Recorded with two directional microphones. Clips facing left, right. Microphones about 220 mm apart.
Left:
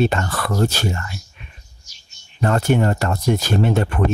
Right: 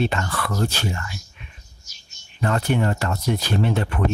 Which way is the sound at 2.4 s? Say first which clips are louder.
Left 4 dB; 45° left (ahead or behind).